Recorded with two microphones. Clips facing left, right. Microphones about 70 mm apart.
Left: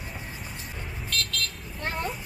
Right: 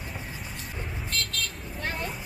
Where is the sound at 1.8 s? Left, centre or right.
Left.